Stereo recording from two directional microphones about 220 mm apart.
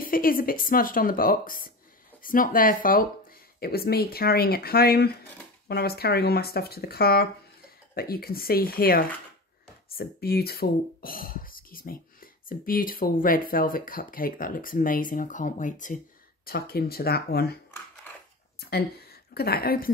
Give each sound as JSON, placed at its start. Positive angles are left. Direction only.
{"t": 0.0, "sound": "speech", "side_deg": 40}
{"t": 18.6, "sound": "a woman's voice", "side_deg": 45}